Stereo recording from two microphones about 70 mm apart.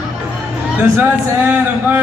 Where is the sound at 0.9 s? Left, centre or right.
Right.